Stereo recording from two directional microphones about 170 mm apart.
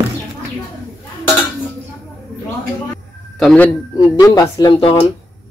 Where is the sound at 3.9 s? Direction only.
20° left (ahead or behind).